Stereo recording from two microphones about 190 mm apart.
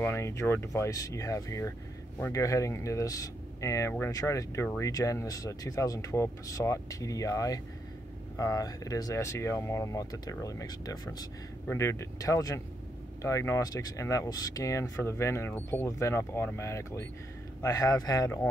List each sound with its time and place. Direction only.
0.0 s speech: 15° left (ahead or behind)